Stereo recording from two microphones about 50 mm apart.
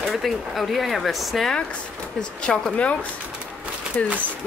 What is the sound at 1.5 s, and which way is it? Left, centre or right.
Speech, left.